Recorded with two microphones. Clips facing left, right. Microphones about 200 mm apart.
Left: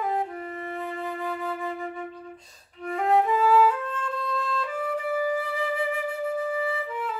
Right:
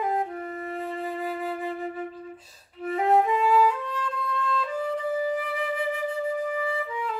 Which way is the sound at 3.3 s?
15° right (ahead or behind).